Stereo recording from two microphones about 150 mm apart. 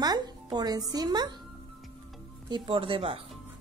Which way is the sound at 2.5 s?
35° right (ahead or behind).